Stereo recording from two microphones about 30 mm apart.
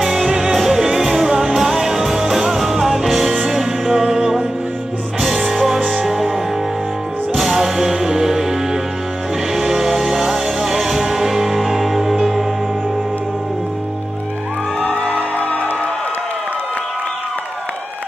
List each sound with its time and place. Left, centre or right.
0.0 s music: centre
7.3 s music: centre
9.5 s music: centre
14.8 s music: left